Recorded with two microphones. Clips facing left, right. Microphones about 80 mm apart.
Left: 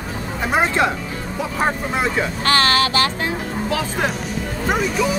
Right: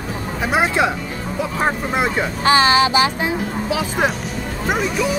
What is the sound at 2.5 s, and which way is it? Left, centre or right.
Speech, centre.